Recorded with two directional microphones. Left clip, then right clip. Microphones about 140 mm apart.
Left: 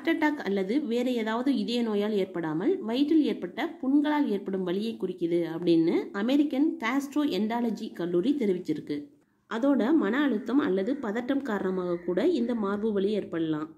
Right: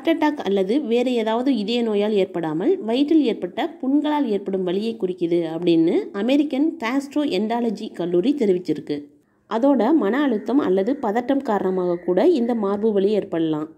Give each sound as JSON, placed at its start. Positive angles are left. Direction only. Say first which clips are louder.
{"t": 0.0, "sound": "a woman's voice", "louder": "right 7 dB", "side_deg": -25}